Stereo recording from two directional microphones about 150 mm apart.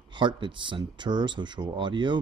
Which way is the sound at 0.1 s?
30° right (ahead or behind).